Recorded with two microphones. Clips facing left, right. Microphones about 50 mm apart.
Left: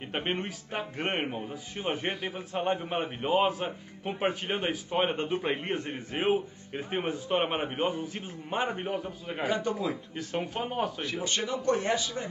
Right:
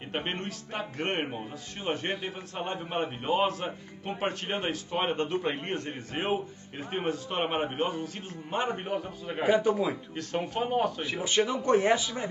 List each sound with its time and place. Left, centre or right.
0.1 s a man's voice: centre
9.4 s speech: centre
10.1 s speech: centre
11.0 s speech: centre